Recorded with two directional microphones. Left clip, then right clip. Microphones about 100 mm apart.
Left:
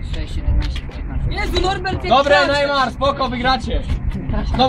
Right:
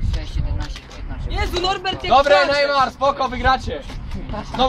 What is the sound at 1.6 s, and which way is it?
Speech, 65° right (ahead or behind).